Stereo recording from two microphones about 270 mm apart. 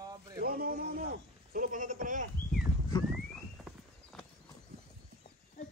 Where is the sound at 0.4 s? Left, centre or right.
Right.